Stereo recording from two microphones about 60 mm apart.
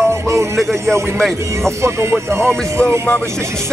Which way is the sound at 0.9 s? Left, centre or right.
Right.